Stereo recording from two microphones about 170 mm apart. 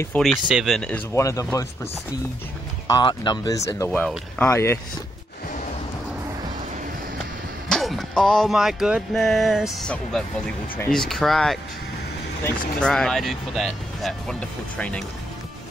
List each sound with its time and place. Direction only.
0.1 s speech: 10° left (ahead or behind)
0.5 s speech: 5° right (ahead or behind)
1.1 s speech: 20° left (ahead or behind)
2.9 s speech: 25° left (ahead or behind)
7.6 s music: centre (ahead or behind)
10.9 s speech: 5° left (ahead or behind)
12.8 s speech: 5° left (ahead or behind)